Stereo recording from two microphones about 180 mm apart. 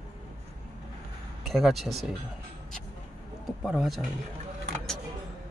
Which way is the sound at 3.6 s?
Centre (ahead or behind).